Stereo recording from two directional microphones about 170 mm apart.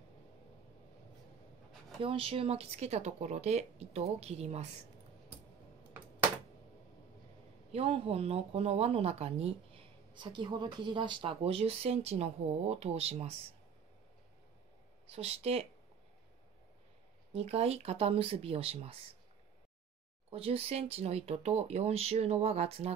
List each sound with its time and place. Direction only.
2.0 s speech: 35° right (ahead or behind)
7.7 s speech: 35° right (ahead or behind)
15.0 s speech: 35° right (ahead or behind)
17.3 s speech: 35° right (ahead or behind)
20.2 s speech: 35° right (ahead or behind)